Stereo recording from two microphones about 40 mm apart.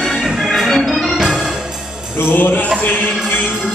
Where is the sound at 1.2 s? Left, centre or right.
Centre.